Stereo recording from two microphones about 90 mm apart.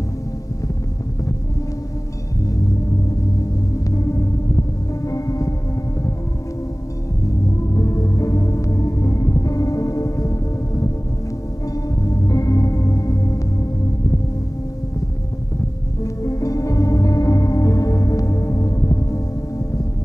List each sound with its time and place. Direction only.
3.7 s music: 40° left (ahead or behind)
7.7 s music: 40° left (ahead or behind)
11.9 s music: 40° left (ahead or behind)
16.0 s music: 35° left (ahead or behind)